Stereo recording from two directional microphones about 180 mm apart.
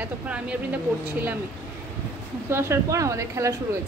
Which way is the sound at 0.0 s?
5° right (ahead or behind).